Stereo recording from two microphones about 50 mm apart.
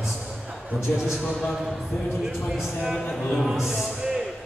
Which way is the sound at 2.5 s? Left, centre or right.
Centre.